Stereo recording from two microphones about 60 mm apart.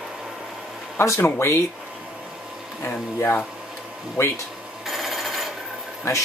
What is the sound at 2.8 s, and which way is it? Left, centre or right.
Speech, left.